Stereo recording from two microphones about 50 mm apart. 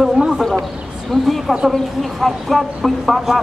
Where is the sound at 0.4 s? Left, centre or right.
Centre.